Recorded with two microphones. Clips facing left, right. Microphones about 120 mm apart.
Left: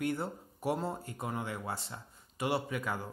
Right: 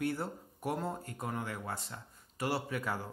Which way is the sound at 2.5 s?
Centre (ahead or behind).